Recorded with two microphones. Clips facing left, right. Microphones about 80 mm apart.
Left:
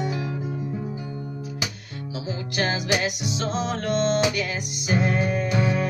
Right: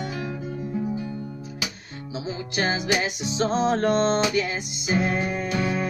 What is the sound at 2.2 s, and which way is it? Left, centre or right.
Music, centre.